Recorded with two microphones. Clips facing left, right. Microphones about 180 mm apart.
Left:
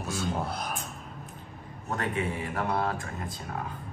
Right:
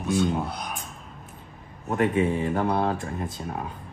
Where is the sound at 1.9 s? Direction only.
25° right (ahead or behind).